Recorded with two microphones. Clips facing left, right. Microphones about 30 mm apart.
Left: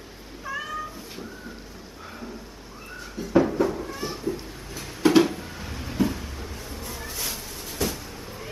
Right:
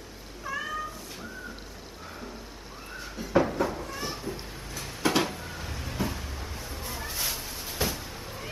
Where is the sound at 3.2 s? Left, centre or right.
Centre.